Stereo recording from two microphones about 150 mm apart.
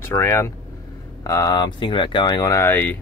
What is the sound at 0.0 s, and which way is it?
Speech, 15° left (ahead or behind).